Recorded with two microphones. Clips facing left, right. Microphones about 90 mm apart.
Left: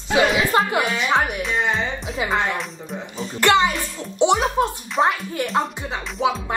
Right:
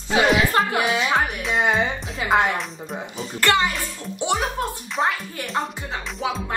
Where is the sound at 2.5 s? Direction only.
Centre (ahead or behind).